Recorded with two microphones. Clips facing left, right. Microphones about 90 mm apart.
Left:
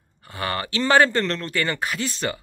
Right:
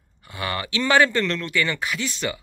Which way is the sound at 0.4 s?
40° left (ahead or behind).